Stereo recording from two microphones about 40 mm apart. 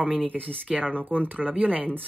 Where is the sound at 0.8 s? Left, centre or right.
Right.